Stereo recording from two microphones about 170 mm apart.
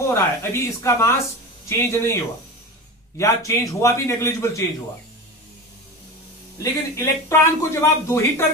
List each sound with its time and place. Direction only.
0.1 s speech: 15° left (ahead or behind)
3.2 s speech: 15° left (ahead or behind)
6.6 s speech: 15° left (ahead or behind)